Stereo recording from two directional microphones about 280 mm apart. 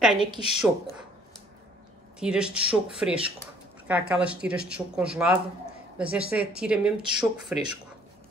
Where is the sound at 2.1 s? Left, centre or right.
Centre.